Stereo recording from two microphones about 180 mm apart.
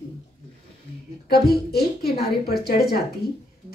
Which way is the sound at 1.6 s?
60° left (ahead or behind).